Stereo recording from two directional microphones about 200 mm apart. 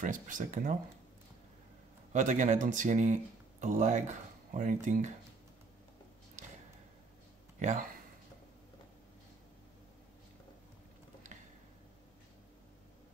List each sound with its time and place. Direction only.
0.0 s speech: 40° right (ahead or behind)
2.1 s speech: 40° right (ahead or behind)
7.5 s speech: 35° right (ahead or behind)